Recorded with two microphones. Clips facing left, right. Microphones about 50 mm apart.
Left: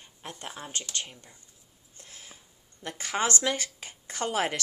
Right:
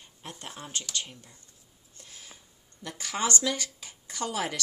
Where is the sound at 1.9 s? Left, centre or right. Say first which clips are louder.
Left 1 dB; left.